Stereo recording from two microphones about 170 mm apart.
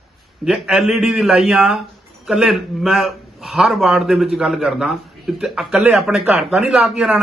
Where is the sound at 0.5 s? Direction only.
5° right (ahead or behind).